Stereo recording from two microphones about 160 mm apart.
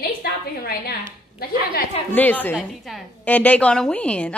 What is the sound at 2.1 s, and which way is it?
A woman's voice, 10° left (ahead or behind).